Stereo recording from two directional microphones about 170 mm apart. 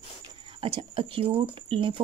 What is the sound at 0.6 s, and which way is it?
A woman's voice, 35° right (ahead or behind).